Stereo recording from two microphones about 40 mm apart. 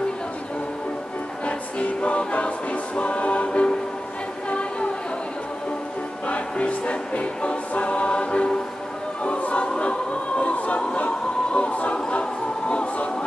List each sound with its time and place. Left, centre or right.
1.4 s choir: left
2.7 s music: left
6.2 s choir: left